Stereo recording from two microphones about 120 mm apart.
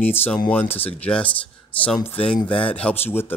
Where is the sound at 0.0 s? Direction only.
15° left (ahead or behind).